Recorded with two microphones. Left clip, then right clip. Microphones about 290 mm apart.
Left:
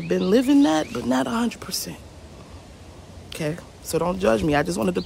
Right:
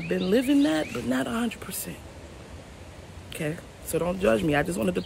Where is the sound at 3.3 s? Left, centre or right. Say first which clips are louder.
Left 4 dB; centre.